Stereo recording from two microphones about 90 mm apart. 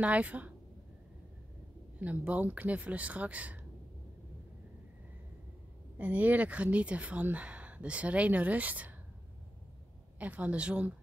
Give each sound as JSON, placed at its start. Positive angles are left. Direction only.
{"t": 0.0, "sound": "speech", "side_deg": -15}
{"t": 2.0, "sound": "speech", "side_deg": -15}
{"t": 5.9, "sound": "speech", "side_deg": -15}
{"t": 10.1, "sound": "speech", "side_deg": -15}